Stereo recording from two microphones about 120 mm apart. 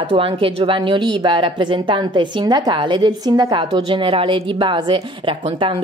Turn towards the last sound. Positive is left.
turn(degrees=-45)  # may be behind; listen again after turning